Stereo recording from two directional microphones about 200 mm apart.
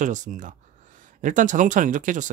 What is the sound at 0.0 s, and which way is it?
Speech, 40° right (ahead or behind).